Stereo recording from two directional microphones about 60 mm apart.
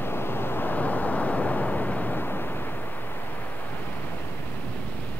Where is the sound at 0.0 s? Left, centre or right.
Left.